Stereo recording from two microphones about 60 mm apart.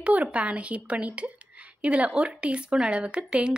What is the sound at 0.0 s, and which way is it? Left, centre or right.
Speech, right.